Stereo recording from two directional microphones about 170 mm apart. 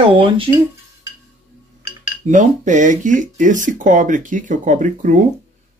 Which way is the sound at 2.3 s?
45° right (ahead or behind).